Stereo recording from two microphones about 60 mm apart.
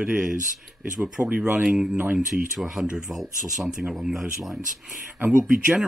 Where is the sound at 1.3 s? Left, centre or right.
Right.